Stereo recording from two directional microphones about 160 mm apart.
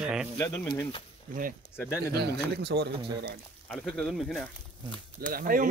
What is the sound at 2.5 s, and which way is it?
Speech, 90° right.